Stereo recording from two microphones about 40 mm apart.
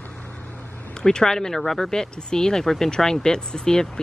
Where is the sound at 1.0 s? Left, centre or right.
Centre.